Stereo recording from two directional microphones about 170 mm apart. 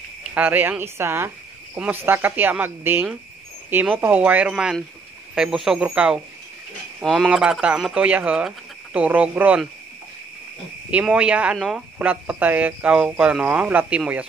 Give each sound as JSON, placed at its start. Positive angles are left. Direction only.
{"t": 0.3, "sound": "speech", "side_deg": -10}
{"t": 10.9, "sound": "speech", "side_deg": -5}